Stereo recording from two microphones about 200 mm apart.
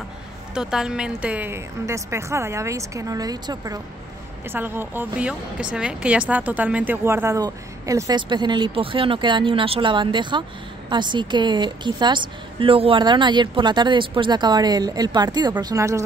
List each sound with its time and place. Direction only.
0.6 s a woman's voice: 5° right (ahead or behind)